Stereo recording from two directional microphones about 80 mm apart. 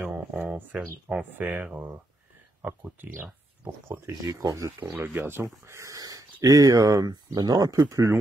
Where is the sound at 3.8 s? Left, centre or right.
Right.